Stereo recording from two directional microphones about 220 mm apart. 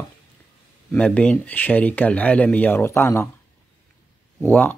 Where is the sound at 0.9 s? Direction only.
5° left (ahead or behind).